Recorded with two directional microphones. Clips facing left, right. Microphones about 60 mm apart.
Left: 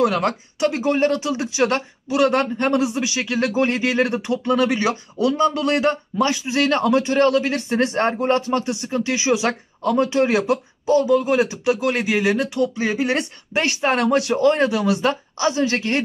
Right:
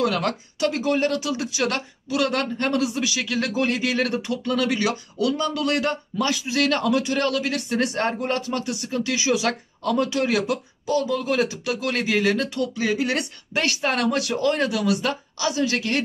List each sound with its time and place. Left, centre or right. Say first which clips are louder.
0.0 s speech: left 4 dB; left